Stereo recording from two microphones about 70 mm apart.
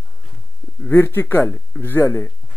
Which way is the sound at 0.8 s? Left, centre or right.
Left.